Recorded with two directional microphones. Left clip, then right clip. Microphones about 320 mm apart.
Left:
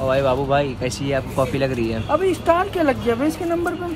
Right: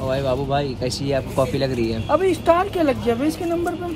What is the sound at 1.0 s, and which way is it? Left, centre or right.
Speech, centre.